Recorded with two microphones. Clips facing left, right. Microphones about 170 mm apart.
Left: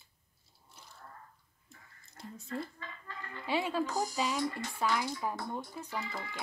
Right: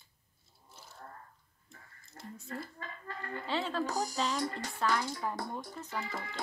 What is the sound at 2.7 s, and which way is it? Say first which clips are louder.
Music: right 3 dB; 50° right (ahead or behind).